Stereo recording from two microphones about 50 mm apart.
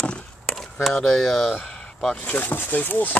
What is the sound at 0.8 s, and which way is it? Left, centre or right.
Speech, centre.